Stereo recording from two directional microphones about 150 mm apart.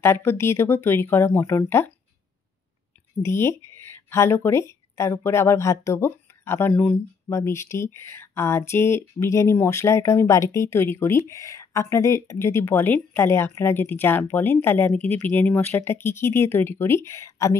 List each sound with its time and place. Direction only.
0.0 s speech: 15° left (ahead or behind)
3.2 s speech: 15° left (ahead or behind)